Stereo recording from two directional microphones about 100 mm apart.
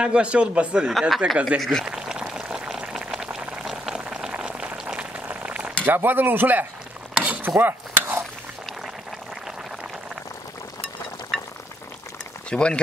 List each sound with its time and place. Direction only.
0.0 s a man's voice: 10° right (ahead or behind)
1.9 s boiling: 5° right (ahead or behind)
5.9 s speech: 20° right (ahead or behind)
7.2 s mechanisms: 15° right (ahead or behind)
12.4 s speech: 10° left (ahead or behind)